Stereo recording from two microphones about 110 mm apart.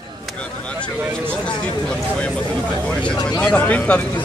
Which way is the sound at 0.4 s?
10° left (ahead or behind).